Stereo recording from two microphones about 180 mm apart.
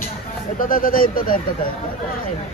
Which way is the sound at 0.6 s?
50° left (ahead or behind).